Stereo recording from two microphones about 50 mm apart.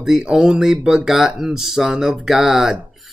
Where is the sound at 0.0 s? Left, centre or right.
Centre.